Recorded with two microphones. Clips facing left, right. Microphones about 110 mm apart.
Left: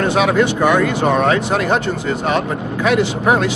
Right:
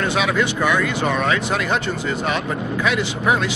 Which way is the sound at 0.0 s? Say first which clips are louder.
Left 5 dB; 45° left (ahead or behind).